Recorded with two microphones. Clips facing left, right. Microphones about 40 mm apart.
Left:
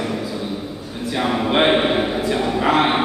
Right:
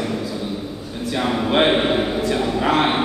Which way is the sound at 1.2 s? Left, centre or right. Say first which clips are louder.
Even; centre.